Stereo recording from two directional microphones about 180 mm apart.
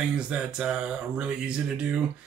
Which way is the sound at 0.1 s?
5° right (ahead or behind).